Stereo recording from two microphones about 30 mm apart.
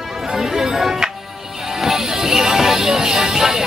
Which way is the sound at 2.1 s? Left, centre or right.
Centre.